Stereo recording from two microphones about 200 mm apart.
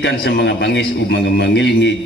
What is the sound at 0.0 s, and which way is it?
A man's voice, 55° left (ahead or behind).